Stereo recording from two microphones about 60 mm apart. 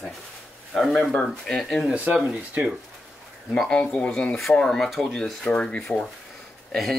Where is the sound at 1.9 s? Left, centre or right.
Right.